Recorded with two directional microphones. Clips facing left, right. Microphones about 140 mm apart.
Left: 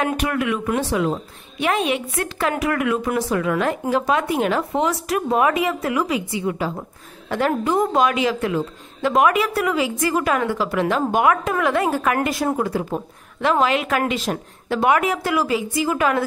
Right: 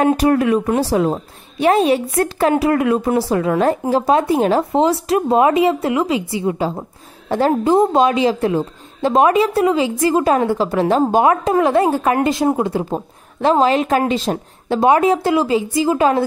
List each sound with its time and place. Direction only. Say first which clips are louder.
0.0 s a woman's voice: right 8 dB; 35° right (ahead or behind)